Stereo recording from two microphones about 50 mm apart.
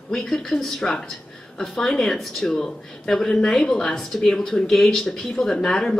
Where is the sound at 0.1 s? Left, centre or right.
Centre.